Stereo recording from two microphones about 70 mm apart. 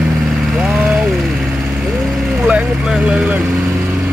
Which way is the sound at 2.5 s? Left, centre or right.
Centre.